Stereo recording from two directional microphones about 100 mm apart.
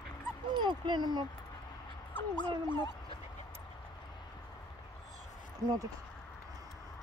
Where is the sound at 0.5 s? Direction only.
50° right (ahead or behind).